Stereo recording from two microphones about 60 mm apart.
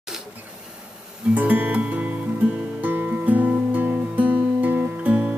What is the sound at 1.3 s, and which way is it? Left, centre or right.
Music, right.